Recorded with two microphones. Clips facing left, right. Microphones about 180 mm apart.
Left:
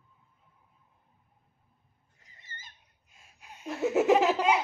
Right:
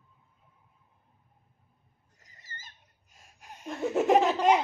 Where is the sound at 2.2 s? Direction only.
40° right (ahead or behind).